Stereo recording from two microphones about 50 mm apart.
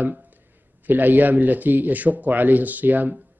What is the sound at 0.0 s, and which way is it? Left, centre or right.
Speech, right.